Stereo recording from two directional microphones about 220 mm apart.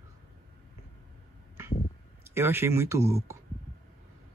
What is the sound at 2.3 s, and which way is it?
Speech, 10° right (ahead or behind).